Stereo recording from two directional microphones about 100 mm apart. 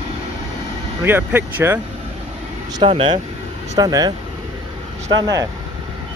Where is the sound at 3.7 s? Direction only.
40° right (ahead or behind).